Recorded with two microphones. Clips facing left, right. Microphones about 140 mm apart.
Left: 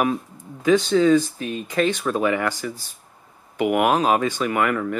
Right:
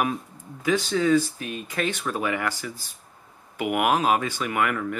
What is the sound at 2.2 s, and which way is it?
Speech, 35° left (ahead or behind).